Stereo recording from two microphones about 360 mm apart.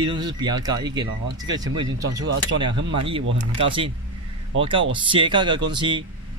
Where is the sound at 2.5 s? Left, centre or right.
Right.